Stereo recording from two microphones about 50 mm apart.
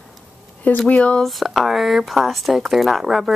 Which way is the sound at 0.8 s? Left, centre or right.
Left.